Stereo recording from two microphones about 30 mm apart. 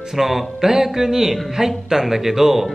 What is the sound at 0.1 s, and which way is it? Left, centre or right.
Speech, centre.